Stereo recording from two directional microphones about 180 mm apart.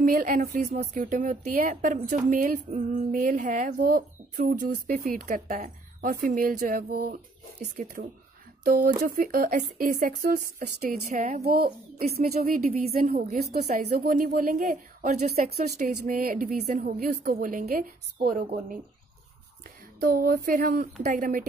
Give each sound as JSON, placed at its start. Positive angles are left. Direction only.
{"t": 0.0, "sound": "a woman's voice", "side_deg": -50}
{"t": 16.1, "sound": "a woman's voice", "side_deg": -55}
{"t": 20.0, "sound": "a woman's voice", "side_deg": -55}